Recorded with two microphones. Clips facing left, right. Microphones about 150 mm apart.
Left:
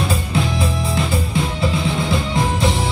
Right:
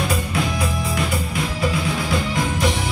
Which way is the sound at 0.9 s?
25° left (ahead or behind).